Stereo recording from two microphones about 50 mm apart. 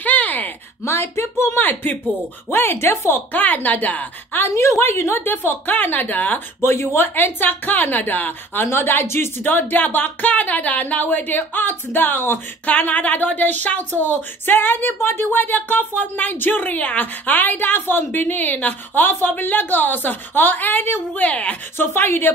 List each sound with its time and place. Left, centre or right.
0.0 s a sound: left
0.8 s speech: left
1.6 s speech: left
2.5 s a woman's voice: left
3.3 s speech: left
4.6 s a woman's voice: left
6.6 s a woman's voice: left
9.0 s speech: left
9.4 s speech: left
12.6 s speech: left
21.1 s speech: left
21.7 s a woman's voice: left